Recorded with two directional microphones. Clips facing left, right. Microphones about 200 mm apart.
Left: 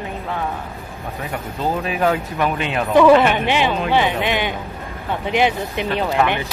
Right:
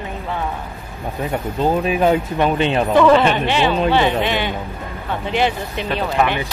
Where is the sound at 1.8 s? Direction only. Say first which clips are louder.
Right 3 dB; 20° right (ahead or behind).